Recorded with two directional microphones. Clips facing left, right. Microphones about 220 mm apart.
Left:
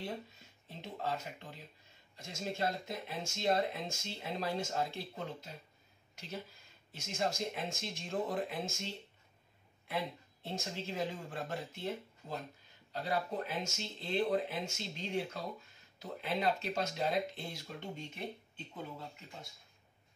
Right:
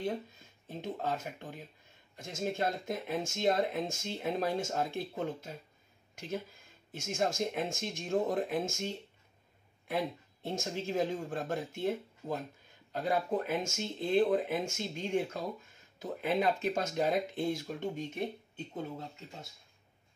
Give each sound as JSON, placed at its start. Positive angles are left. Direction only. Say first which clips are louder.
{"t": 0.7, "sound": "speech", "louder": "right 4 dB", "side_deg": -50}
{"t": 6.9, "sound": "speech", "louder": "right 4 dB", "side_deg": -50}